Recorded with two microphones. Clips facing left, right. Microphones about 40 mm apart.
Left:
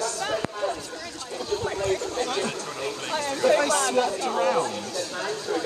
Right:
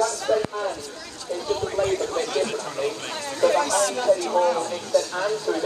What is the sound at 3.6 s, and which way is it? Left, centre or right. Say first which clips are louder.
Speech: right 2 dB; left.